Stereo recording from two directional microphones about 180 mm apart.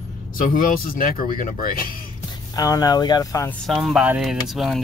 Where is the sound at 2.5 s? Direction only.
20° left (ahead or behind).